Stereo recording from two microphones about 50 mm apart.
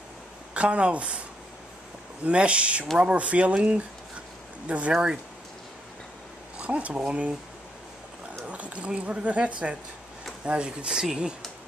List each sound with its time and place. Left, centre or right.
0.6 s speech: right
2.2 s speech: right
4.9 s speech: centre
6.6 s speech: right
8.5 s speech: right
10.9 s speech: centre